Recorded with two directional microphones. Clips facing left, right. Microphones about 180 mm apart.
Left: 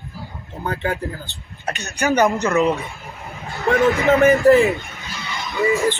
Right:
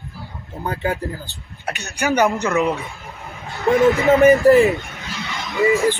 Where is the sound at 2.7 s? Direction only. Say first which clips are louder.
Left 2 dB; centre (ahead or behind).